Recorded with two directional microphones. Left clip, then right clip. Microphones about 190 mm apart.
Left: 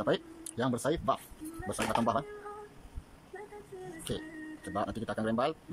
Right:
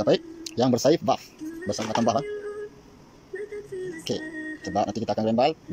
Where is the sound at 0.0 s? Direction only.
15° right (ahead or behind).